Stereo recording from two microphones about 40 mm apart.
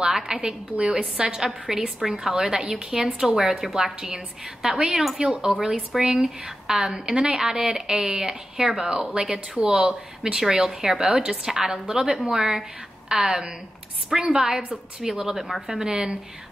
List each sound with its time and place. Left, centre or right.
0.1 s a woman's voice: centre
0.7 s a woman's voice: right
10.2 s a woman's voice: centre
15.9 s a woman's voice: right